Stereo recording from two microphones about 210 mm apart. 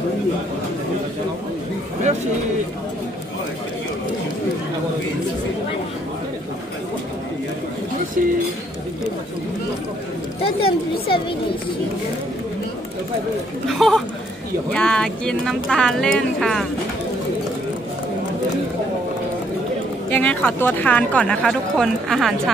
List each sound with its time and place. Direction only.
8.2 s speech: 40° right (ahead or behind)
10.4 s speech: 25° left (ahead or behind)
13.7 s speech: centre (ahead or behind)
20.1 s a woman's voice: 5° left (ahead or behind)